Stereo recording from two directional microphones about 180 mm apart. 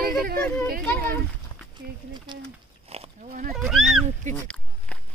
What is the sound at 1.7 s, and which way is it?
Speech, 25° right (ahead or behind).